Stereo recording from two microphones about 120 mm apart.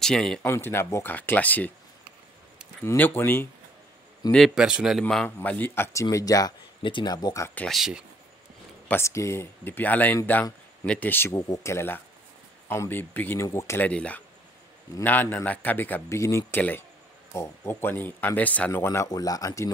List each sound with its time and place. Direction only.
0.0 s speech: 5° left (ahead or behind)
0.5 s a man's voice: 20° left (ahead or behind)
2.8 s a man's voice: 20° left (ahead or behind)
4.2 s speech: 30° left (ahead or behind)
4.6 s speech: 5° right (ahead or behind)
5.0 s a man's voice: 10° left (ahead or behind)
6.0 s speech: 30° left (ahead or behind)
6.8 s speech: 40° left (ahead or behind)
7.6 s speech: centre (ahead or behind)
8.8 s a man's voice: 20° left (ahead or behind)
11.3 s a man's voice: 30° left (ahead or behind)